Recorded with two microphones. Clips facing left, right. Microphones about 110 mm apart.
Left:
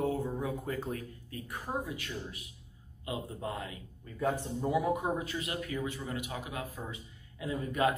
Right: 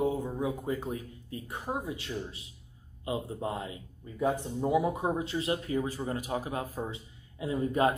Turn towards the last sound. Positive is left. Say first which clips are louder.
# right 3 dB
turn(degrees=-30)  # may be behind; listen again after turning